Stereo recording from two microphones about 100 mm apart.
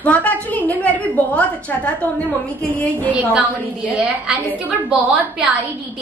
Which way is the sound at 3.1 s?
15° right (ahead or behind).